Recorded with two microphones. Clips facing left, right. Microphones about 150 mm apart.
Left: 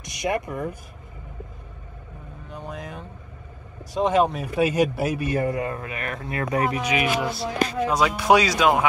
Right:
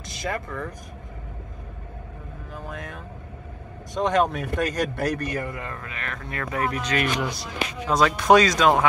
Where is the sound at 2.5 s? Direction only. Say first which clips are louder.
Left 2 dB; centre (ahead or behind).